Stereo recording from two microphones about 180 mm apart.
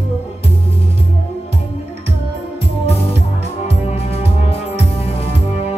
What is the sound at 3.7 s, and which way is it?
Music, 35° left (ahead or behind).